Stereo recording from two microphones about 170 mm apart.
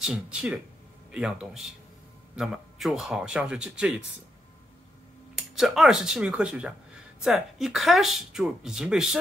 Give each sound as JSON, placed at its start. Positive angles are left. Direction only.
{"t": 0.0, "sound": "speech", "side_deg": -5}
{"t": 5.3, "sound": "speech", "side_deg": -5}